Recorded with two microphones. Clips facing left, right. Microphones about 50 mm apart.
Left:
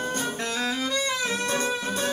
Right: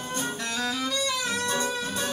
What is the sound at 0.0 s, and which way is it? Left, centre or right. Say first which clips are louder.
Music: left 3 dB; left.